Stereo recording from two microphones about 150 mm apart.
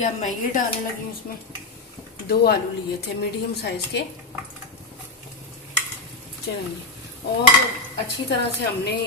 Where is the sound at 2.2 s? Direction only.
90° left.